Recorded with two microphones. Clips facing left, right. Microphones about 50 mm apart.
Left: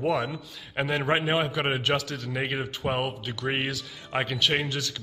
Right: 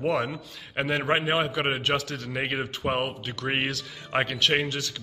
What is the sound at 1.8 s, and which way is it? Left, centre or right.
Speech, right.